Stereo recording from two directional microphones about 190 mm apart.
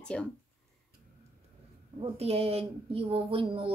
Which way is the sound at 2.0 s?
30° right (ahead or behind).